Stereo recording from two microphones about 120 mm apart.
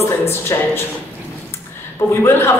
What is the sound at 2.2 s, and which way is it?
Speech, 20° left (ahead or behind).